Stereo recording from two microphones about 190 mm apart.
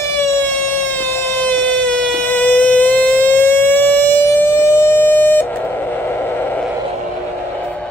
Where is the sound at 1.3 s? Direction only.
10° left (ahead or behind).